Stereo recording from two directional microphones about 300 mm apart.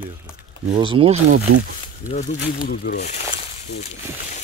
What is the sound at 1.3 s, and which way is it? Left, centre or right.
Speech, right.